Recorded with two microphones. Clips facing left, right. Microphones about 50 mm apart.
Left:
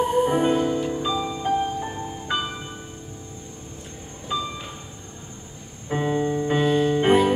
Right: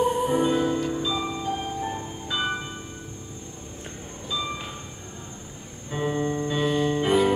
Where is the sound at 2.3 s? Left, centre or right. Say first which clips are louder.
Left 2 dB; left.